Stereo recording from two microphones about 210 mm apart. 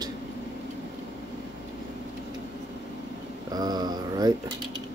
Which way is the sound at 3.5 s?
20° right (ahead or behind).